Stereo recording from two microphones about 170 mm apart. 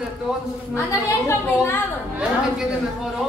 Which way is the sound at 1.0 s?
15° left (ahead or behind).